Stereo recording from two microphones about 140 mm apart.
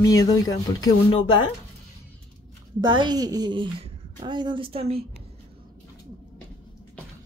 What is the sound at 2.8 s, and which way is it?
A woman's voice, 30° right (ahead or behind).